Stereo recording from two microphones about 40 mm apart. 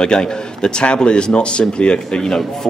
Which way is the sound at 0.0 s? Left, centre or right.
Left.